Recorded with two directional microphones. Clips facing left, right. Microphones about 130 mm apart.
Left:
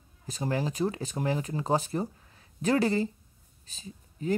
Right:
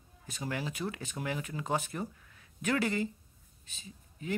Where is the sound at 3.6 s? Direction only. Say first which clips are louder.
Left 6 dB; 35° left (ahead or behind).